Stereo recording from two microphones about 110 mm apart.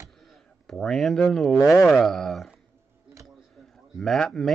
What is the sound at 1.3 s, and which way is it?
Speech, centre (ahead or behind).